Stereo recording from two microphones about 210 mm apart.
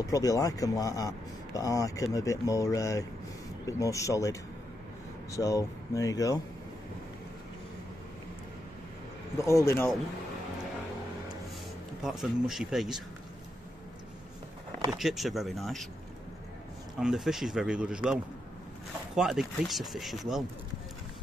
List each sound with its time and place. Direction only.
0.0 s speech: 15° left (ahead or behind)
9.5 s speech: 15° left (ahead or behind)
12.0 s speech: centre (ahead or behind)
14.9 s speech: centre (ahead or behind)
17.0 s speech: centre (ahead or behind)